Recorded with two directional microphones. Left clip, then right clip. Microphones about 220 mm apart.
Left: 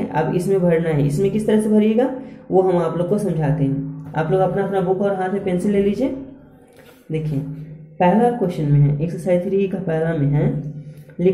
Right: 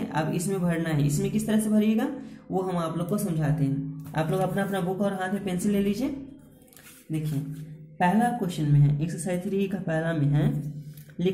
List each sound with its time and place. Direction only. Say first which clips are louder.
0.0 s a woman's voice: left 9 dB; 10° right (ahead or behind)
4.1 s a woman's voice: left 9 dB; 25° right (ahead or behind)